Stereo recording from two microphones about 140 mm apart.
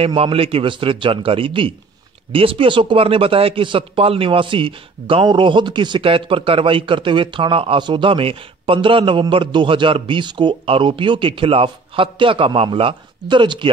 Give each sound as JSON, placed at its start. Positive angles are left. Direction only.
{"t": 0.0, "sound": "a man's voice", "side_deg": -45}